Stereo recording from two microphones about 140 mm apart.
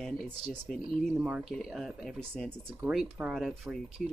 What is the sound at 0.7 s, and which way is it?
Speech, centre (ahead or behind).